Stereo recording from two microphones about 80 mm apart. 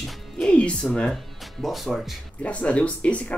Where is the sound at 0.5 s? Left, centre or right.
Centre.